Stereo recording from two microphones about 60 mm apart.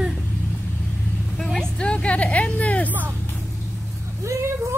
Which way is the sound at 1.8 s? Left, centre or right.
Centre.